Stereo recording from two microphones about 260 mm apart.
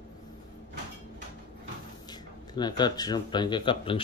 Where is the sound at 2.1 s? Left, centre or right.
Centre.